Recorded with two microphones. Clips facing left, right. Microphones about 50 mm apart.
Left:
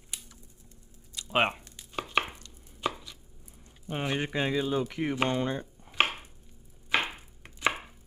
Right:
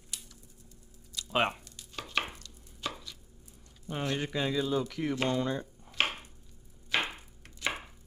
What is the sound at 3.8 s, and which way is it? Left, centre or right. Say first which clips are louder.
Speech: left 2 dB; left.